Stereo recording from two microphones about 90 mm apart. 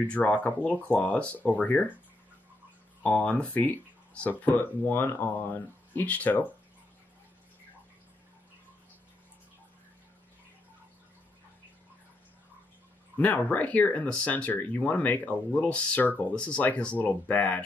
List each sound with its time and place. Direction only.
0.1 s speech: 15° left (ahead or behind)
3.0 s speech: 15° left (ahead or behind)
13.2 s speech: 15° left (ahead or behind)